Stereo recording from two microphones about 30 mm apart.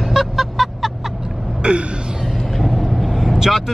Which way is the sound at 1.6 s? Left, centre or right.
Right.